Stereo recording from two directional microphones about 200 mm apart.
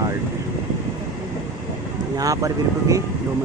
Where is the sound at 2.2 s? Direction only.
15° right (ahead or behind).